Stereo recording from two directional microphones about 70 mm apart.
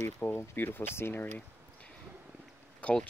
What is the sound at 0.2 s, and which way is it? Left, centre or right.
Speech, left.